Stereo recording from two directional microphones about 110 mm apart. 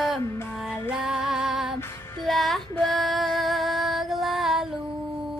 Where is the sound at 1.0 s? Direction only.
5° right (ahead or behind).